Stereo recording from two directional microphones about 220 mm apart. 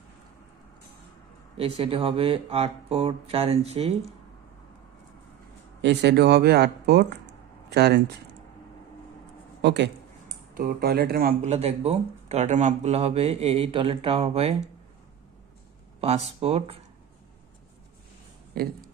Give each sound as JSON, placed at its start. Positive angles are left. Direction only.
{"t": 1.6, "sound": "speech", "side_deg": -25}
{"t": 5.8, "sound": "speech", "side_deg": -50}
{"t": 9.6, "sound": "speech", "side_deg": -50}
{"t": 16.0, "sound": "speech", "side_deg": -30}
{"t": 18.6, "sound": "speech", "side_deg": -40}